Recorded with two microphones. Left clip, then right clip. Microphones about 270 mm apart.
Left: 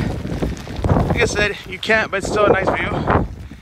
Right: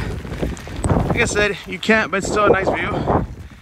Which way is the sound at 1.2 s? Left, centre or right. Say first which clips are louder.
Right 2 dB; centre.